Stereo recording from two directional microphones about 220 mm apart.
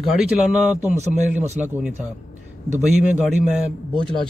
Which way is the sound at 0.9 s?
30° right (ahead or behind).